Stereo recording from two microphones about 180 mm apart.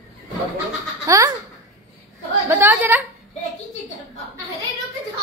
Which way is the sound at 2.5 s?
10° right (ahead or behind).